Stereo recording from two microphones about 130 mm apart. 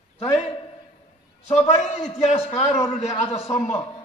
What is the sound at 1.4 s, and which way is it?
A man's voice, 55° left (ahead or behind).